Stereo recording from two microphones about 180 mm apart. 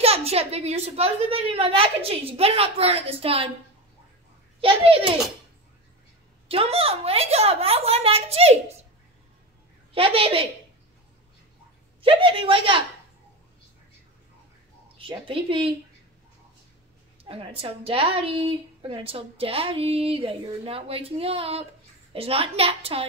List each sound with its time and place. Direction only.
0.0 s a woman's voice: 35° right (ahead or behind)
4.6 s a child's voice: 30° right (ahead or behind)
6.5 s a woman's voice: 35° right (ahead or behind)
9.9 s a woman's voice: 30° right (ahead or behind)
12.0 s a woman's voice: 30° right (ahead or behind)
15.0 s a woman's voice: 30° right (ahead or behind)
17.2 s a woman's voice: 30° right (ahead or behind)